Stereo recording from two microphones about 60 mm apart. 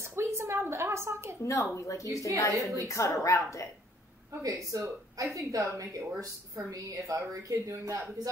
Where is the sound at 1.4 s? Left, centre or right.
Left.